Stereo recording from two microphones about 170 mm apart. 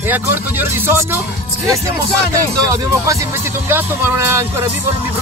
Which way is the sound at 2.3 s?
20° right (ahead or behind).